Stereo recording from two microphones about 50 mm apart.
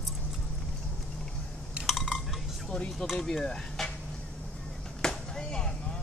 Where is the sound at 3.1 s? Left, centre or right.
Centre.